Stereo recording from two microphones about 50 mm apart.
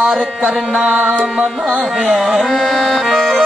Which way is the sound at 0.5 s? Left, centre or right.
Centre.